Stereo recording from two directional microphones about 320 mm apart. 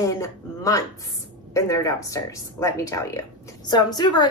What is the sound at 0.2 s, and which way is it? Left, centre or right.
A woman's voice, centre.